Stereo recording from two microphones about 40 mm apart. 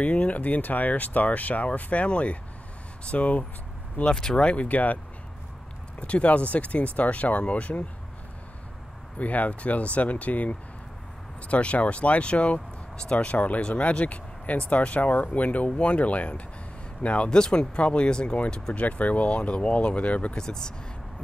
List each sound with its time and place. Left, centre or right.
0.0 s speech: left
4.0 s speech: centre
4.4 s speech: left
4.6 s speech: left
5.9 s speech: left
9.2 s speech: left
12.5 s vehicle: centre
13.1 s speech: left
17.3 s speech: left
18.8 s speech: left
20.3 s speech: centre